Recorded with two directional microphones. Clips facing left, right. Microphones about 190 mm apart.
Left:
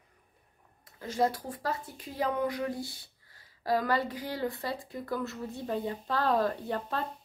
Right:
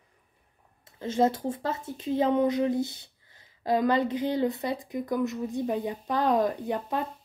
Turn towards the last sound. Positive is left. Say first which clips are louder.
# right 4 dB
turn(degrees=-15)  # may be behind; listen again after turning